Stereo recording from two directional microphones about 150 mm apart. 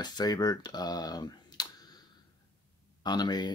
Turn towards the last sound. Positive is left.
turn(degrees=30)  # may be behind; listen again after turning